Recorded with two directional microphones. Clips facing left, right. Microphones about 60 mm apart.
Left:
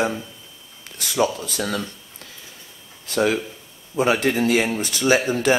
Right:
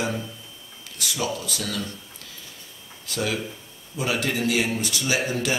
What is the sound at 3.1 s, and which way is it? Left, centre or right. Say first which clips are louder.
Speech: left 7 dB; left.